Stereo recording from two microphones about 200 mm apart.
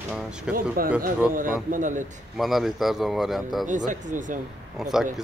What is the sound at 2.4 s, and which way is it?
Speech, centre (ahead or behind).